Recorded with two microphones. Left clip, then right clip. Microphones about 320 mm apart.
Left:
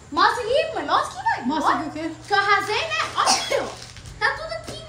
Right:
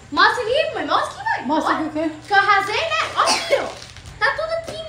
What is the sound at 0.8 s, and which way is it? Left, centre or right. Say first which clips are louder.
Chuckle: right 1 dB; left.